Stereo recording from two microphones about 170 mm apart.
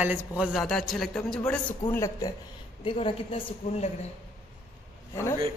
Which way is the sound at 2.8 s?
30° left (ahead or behind).